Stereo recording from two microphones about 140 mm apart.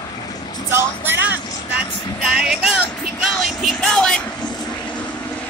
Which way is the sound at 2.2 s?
5° right (ahead or behind).